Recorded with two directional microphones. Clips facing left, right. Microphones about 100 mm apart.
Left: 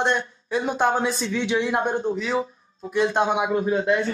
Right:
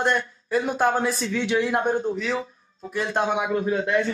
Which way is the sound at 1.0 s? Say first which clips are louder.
Even; 25° left (ahead or behind).